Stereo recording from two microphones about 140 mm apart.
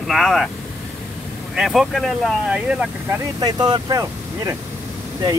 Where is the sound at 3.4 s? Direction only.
30° right (ahead or behind).